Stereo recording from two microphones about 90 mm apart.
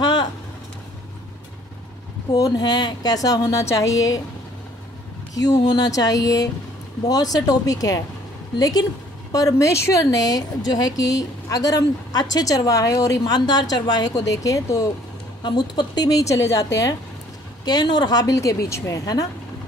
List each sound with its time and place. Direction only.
0.0 s vehicle: 55° left (ahead or behind)
2.3 s speech: 45° left (ahead or behind)
5.3 s a woman's voice: 45° left (ahead or behind)
15.4 s speech: 60° left (ahead or behind); by 16.9 s 35° left (ahead or behind)
17.6 s a woman's voice: 50° left (ahead or behind)